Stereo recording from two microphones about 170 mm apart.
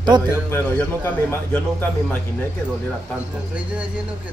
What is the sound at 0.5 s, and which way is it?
Speech, 15° left (ahead or behind).